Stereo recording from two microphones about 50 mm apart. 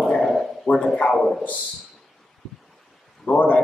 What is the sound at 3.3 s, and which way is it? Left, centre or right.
Speech, left.